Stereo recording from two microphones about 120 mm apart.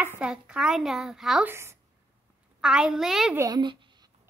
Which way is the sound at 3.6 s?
40° right (ahead or behind).